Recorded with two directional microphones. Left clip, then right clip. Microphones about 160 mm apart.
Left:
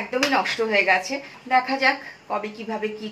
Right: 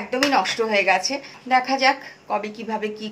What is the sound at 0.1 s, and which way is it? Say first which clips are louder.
A woman's voice: right 2 dB; 25° right (ahead or behind).